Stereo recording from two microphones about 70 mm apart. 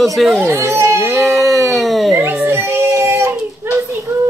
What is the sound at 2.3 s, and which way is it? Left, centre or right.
Child singing, right.